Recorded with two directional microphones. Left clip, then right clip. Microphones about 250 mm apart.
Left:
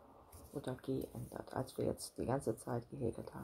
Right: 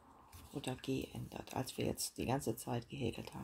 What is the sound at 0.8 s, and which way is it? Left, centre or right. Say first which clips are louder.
Speech: even; right.